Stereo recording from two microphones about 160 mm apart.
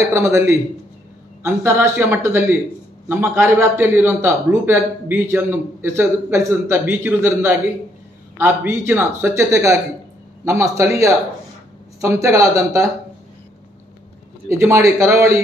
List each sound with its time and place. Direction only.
0.3 s a man's voice: 15° right (ahead or behind)
14.5 s a man's voice: 15° right (ahead or behind)